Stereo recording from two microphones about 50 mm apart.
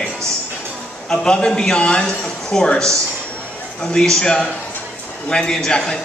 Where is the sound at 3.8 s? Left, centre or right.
Centre.